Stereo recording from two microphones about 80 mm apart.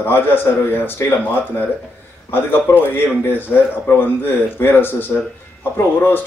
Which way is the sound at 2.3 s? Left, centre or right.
Left.